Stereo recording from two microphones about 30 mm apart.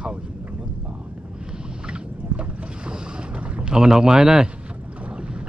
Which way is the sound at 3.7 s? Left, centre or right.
Right.